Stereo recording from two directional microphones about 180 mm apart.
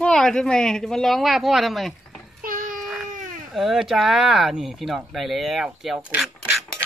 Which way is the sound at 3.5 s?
Centre (ahead or behind).